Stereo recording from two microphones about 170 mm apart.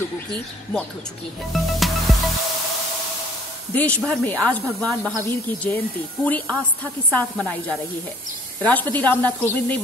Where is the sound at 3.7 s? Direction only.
10° left (ahead or behind).